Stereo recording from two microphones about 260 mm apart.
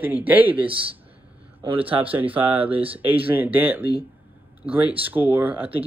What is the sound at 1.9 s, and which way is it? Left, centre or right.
Speech, centre.